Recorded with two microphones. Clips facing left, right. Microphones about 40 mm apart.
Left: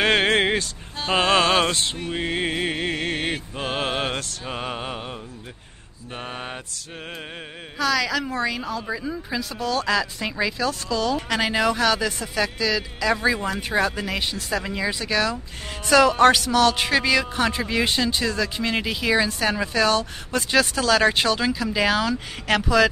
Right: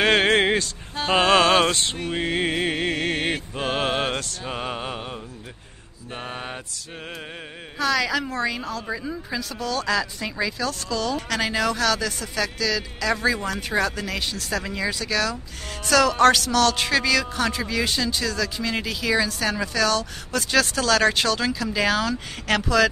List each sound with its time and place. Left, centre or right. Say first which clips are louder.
0.0 s vehicle: right 1 dB; centre
1.1 s music: right 1 dB; centre
3.5 s mantra: right 2 dB; centre
6.1 s a woman's voice: even; centre
7.8 s a woman's voice: even; centre; by 20.4 s left
20.5 s speech: left 1 dB; centre